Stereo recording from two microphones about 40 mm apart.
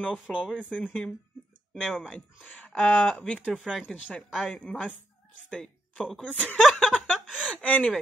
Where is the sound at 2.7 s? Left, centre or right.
Left.